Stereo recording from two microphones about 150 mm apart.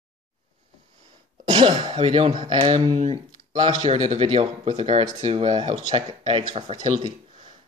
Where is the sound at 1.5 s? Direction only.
35° right (ahead or behind).